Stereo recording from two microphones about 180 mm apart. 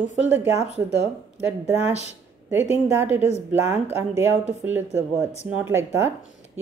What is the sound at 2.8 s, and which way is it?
A woman's voice, 15° right (ahead or behind).